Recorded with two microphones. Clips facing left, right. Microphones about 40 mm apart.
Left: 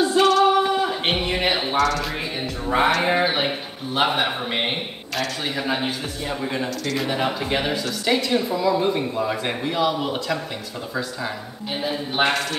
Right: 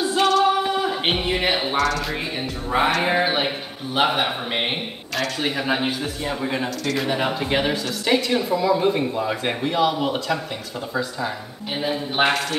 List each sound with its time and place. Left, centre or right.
0.2 s singing: centre
2.7 s a man's voice: centre